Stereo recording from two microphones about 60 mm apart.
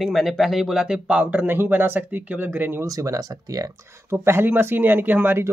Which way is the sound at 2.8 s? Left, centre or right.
Right.